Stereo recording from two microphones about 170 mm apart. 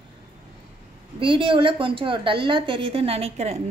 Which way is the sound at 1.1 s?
30° right (ahead or behind).